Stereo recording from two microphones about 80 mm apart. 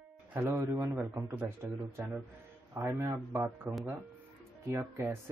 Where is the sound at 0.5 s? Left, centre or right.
Right.